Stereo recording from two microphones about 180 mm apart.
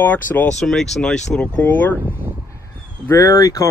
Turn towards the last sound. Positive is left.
turn(degrees=20)  # may be behind; listen again after turning